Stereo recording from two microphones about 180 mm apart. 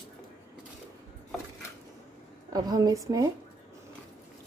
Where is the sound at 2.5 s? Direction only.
20° right (ahead or behind).